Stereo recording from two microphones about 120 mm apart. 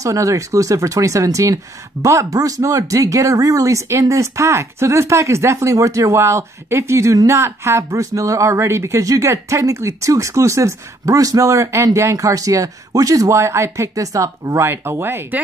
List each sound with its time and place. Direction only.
0.0 s speech: 25° right (ahead or behind)